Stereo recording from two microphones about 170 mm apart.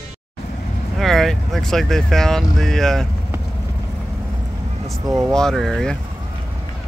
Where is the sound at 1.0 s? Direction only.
Centre (ahead or behind).